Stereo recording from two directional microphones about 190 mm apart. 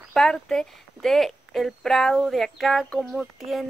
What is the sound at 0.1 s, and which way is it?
A woman's voice, centre (ahead or behind).